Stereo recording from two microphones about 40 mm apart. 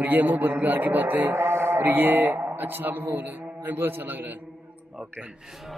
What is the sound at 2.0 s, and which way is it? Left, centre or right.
A man's voice, right.